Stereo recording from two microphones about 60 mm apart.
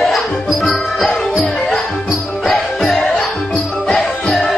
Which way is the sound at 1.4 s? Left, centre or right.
Left.